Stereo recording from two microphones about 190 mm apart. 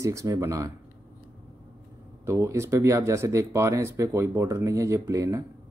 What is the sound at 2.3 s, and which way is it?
Speech, 15° right (ahead or behind).